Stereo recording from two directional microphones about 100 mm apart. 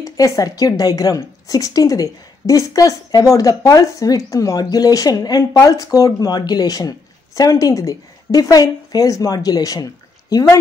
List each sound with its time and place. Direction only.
0.0 s a woman's voice: 35° left (ahead or behind)